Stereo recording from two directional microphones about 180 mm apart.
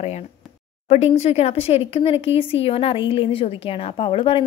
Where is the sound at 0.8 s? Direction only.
35° left (ahead or behind).